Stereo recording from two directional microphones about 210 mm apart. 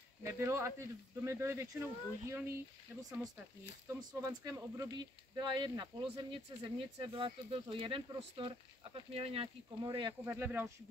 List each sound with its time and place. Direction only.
0.2 s speech: 15° right (ahead or behind)